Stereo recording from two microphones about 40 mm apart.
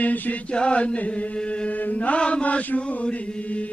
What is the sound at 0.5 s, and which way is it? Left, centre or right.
Chant, left.